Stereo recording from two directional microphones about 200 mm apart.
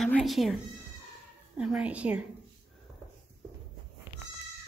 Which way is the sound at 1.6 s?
5° right (ahead or behind).